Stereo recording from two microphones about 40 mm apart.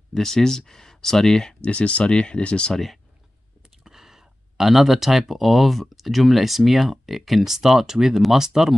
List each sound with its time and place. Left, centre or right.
0.1 s speech: centre
1.6 s speech: left
2.7 s speech: centre
3.8 s speech: centre